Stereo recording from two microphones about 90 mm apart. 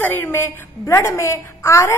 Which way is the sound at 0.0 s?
25° left (ahead or behind).